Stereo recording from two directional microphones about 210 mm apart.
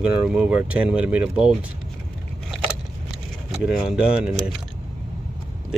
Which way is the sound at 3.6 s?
Centre (ahead or behind).